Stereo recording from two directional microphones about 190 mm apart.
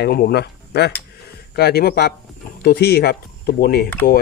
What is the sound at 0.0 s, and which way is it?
A man's voice, 60° left (ahead or behind).